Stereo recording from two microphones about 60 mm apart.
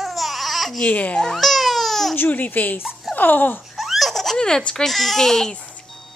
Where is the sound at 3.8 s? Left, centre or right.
Centre.